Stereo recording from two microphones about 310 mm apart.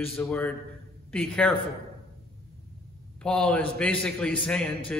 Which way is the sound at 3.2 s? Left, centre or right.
Centre.